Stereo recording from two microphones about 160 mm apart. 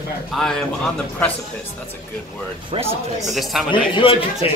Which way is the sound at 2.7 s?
40° right (ahead or behind).